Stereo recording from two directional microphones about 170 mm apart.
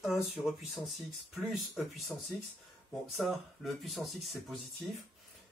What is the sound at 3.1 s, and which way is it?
Speech, centre (ahead or behind).